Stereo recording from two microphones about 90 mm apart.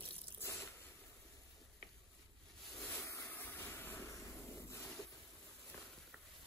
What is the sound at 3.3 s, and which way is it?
Vehicle, 25° left (ahead or behind).